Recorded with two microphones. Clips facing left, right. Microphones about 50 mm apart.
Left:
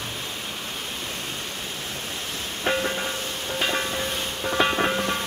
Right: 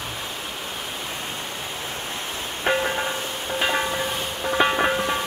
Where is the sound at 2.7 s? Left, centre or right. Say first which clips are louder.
Right 3 dB; centre.